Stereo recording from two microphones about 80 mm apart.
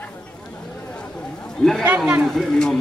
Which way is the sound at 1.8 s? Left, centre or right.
Right.